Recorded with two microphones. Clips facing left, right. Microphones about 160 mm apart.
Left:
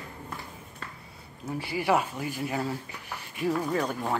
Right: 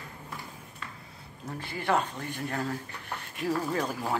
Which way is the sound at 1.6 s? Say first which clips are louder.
Left 2 dB; 10° left (ahead or behind).